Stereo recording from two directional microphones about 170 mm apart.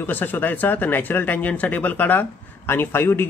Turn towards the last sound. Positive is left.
turn(degrees=10)  # may be behind; listen again after turning